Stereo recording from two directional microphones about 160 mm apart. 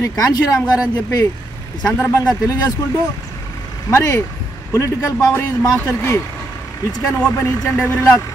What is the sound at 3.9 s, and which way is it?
Speech, 20° left (ahead or behind).